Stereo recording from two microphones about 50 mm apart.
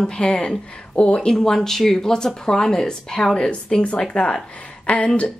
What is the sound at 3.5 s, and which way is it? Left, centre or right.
A woman's voice, left.